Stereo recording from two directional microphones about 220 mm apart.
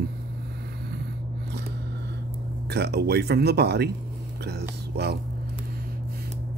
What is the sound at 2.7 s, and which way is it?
Speech, 50° right (ahead or behind).